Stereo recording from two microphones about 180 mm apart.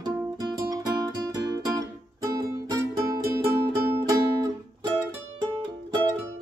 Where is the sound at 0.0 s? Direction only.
25° right (ahead or behind).